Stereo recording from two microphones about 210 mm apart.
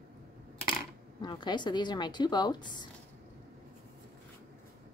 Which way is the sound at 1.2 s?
20° left (ahead or behind).